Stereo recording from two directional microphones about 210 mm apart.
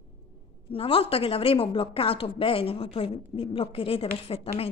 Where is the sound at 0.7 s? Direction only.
25° left (ahead or behind).